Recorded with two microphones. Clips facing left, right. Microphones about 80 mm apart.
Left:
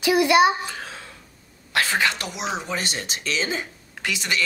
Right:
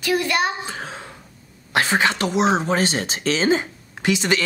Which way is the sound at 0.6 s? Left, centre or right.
Right.